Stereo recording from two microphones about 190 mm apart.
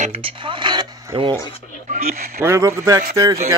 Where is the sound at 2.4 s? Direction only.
15° right (ahead or behind).